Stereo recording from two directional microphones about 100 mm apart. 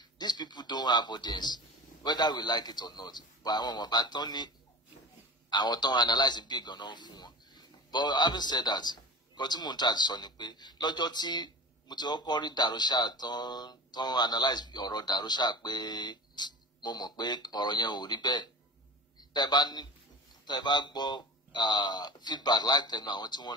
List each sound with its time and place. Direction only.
0.0 s a sound: 45° left (ahead or behind)
2.0 s a man's voice: 45° left (ahead or behind)
5.5 s a man's voice: 45° left (ahead or behind)